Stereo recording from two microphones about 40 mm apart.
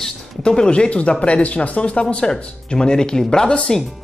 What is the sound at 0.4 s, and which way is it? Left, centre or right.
Speech, left.